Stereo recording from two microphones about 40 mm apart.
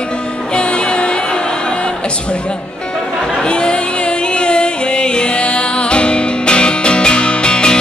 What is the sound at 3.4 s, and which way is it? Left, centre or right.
Music, left.